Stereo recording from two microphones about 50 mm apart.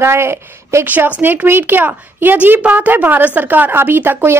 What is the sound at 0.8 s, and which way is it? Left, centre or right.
A woman's voice, right.